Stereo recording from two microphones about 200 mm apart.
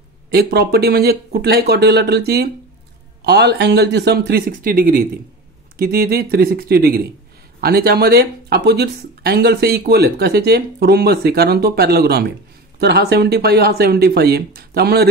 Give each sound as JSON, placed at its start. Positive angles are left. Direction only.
{"t": 0.3, "sound": "speech", "side_deg": -50}